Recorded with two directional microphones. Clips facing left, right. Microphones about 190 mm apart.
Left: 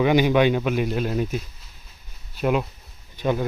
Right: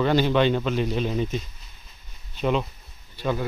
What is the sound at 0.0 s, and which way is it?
Speech, 15° left (ahead or behind).